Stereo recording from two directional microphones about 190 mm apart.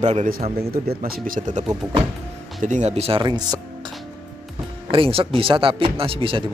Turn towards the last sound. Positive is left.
turn(degrees=-30)  # may be behind; listen again after turning